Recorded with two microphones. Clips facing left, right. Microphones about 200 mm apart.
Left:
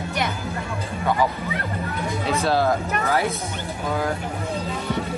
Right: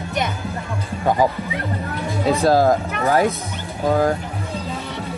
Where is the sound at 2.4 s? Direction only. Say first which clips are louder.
Right 5 dB; 45° right (ahead or behind).